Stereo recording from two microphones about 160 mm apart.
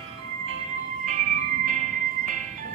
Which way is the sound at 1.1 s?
55° right (ahead or behind).